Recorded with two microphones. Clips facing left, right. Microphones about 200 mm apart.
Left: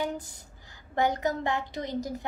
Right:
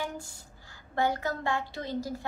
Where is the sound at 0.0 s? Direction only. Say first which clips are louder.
Left 4 dB; 20° left (ahead or behind).